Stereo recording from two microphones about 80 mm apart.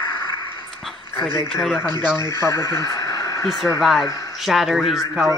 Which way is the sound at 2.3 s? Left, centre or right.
Left.